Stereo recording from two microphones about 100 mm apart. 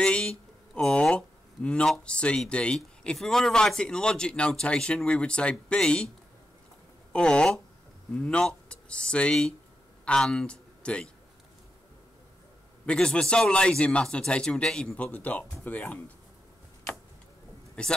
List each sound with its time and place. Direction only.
0.0 s speech: 10° left (ahead or behind)
7.1 s speech: 10° left (ahead or behind)
12.8 s speech: 10° left (ahead or behind)
17.8 s speech: 10° left (ahead or behind)